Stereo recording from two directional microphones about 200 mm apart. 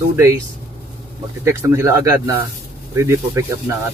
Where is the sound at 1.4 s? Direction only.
15° right (ahead or behind).